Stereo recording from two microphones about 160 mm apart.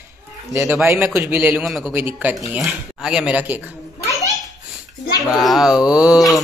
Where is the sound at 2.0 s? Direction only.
10° right (ahead or behind).